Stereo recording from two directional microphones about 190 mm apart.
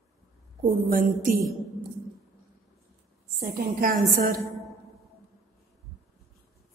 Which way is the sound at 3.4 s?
50° right (ahead or behind).